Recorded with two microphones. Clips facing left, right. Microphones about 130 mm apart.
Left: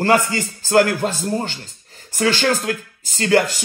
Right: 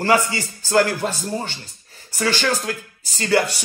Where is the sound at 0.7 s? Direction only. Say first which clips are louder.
Left 3 dB; 50° left (ahead or behind).